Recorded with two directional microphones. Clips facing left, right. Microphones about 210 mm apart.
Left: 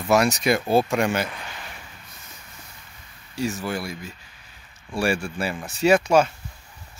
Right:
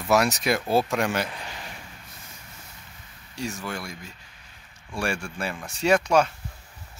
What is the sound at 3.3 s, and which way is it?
Speech, 5° left (ahead or behind).